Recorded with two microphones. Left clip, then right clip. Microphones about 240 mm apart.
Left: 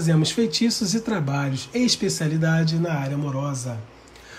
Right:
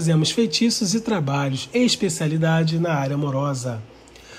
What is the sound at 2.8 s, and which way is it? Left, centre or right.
Speech, centre.